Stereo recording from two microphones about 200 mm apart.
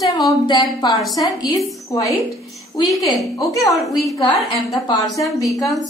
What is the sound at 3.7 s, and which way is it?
Speech, centre (ahead or behind).